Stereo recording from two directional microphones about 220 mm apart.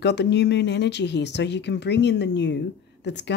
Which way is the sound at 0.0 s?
50° left (ahead or behind).